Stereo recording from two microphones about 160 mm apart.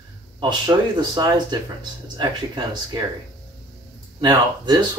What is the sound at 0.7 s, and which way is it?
Speech, 20° right (ahead or behind).